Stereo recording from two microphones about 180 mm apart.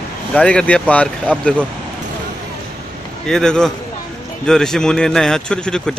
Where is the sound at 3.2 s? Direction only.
5° left (ahead or behind).